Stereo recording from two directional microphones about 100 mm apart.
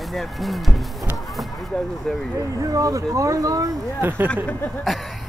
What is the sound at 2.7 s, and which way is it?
Speech, 35° right (ahead or behind).